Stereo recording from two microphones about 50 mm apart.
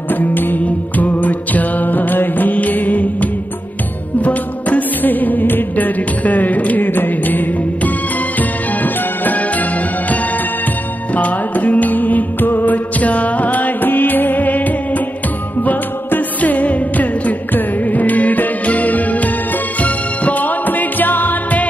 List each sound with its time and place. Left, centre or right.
0.1 s music: left
11.1 s music: left